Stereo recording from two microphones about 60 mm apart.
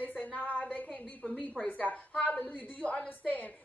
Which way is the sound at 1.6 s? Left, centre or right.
Left.